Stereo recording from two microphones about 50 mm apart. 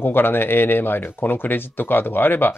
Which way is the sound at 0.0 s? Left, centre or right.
Left.